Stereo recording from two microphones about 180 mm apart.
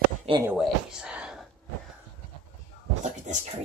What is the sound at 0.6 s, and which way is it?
Speech, 5° right (ahead or behind).